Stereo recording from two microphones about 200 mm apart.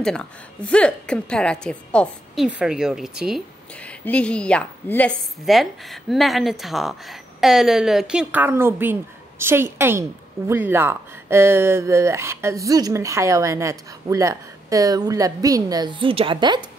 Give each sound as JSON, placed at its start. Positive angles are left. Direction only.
{"t": 0.0, "sound": "a woman's voice", "side_deg": 5}